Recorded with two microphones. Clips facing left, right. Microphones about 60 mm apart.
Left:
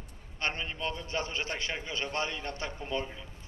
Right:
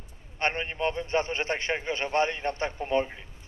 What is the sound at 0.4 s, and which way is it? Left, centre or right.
A man's voice, right.